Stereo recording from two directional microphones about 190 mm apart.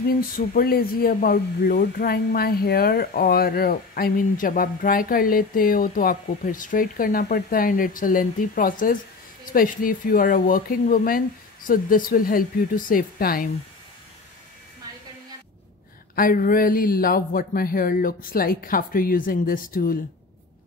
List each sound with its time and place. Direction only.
0.4 s speech: 55° left (ahead or behind)
16.2 s speech: 50° left (ahead or behind)